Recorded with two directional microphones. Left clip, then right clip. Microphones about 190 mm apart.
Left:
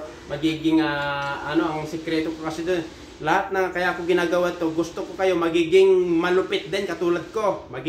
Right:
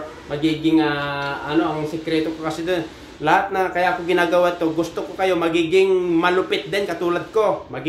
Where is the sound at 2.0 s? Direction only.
20° right (ahead or behind).